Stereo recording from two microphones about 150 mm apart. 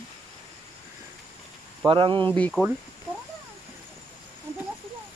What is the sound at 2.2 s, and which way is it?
Speech, 10° left (ahead or behind).